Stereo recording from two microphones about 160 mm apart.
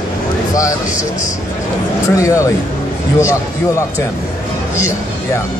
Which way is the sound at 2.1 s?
20° left (ahead or behind).